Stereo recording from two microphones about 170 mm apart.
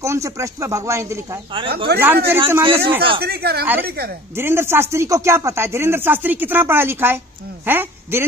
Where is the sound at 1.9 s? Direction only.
70° right (ahead or behind).